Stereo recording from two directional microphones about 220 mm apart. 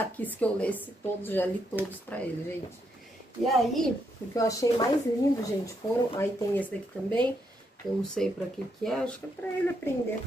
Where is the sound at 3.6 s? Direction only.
Centre (ahead or behind).